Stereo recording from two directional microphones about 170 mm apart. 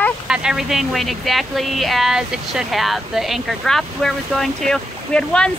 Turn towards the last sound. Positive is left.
turn(degrees=5)  # may be behind; listen again after turning